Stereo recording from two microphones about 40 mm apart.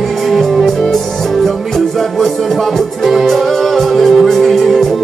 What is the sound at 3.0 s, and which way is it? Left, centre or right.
Music, centre.